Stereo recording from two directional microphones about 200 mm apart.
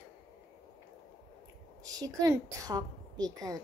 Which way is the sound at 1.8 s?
20° right (ahead or behind).